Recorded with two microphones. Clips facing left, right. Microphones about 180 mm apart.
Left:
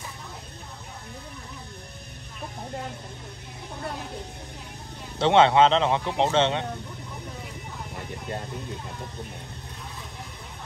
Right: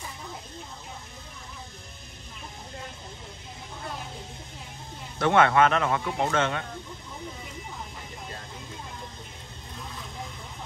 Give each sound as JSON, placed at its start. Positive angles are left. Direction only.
{"t": 5.2, "sound": "speech", "side_deg": 25}